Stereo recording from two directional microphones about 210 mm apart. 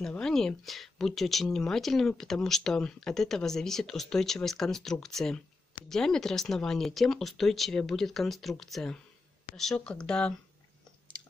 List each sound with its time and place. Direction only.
0.0 s speech: 5° left (ahead or behind)